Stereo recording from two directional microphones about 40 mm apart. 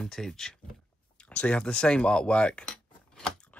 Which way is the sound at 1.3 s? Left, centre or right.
Left.